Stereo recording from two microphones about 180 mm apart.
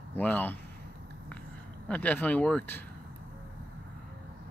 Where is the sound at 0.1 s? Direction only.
10° left (ahead or behind).